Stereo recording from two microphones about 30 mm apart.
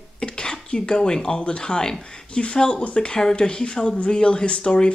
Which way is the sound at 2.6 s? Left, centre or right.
Left.